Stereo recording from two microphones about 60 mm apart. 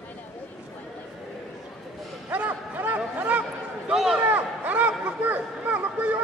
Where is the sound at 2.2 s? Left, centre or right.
Right.